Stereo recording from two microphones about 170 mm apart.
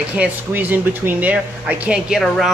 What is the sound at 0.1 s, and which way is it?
Speech, 10° right (ahead or behind).